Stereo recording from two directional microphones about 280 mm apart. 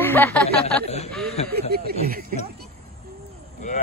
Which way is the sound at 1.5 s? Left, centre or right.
Right.